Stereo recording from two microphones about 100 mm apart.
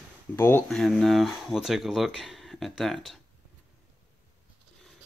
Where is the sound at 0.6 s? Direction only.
Centre (ahead or behind).